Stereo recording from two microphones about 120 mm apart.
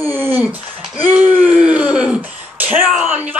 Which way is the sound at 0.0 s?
20° right (ahead or behind).